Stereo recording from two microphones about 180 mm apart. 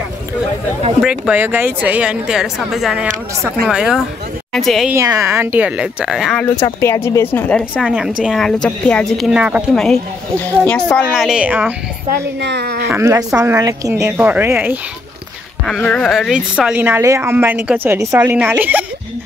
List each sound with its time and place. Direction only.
1.0 s a woman's voice: 5° right (ahead or behind)
4.9 s a woman's voice: 15° right (ahead or behind)
6.4 s speech: 15° left (ahead or behind)
7.8 s a woman's voice: 5° right (ahead or behind)
11.2 s a woman's voice: 5° right (ahead or behind)
12.1 s a woman's voice: 65° right (ahead or behind)
12.8 s a woman's voice: 15° right (ahead or behind)
15.6 s a woman's voice: 5° left (ahead or behind)